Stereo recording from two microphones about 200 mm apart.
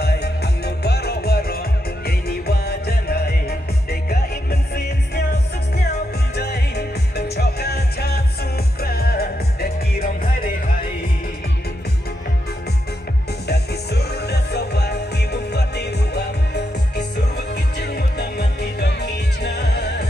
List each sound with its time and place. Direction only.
0.0 s music: 55° left (ahead or behind)
6.3 s music: 55° left (ahead or behind)
13.5 s music: 55° left (ahead or behind)
17.7 s music: 55° left (ahead or behind)